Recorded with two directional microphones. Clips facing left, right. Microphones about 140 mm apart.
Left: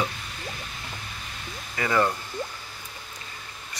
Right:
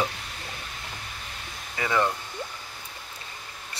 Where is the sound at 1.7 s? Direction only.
15° right (ahead or behind).